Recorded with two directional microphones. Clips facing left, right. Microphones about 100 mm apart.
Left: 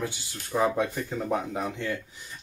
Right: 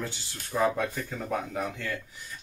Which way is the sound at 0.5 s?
15° left (ahead or behind).